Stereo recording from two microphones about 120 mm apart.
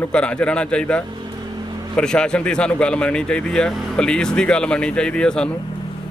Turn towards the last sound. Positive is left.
turn(degrees=5)  # may be behind; listen again after turning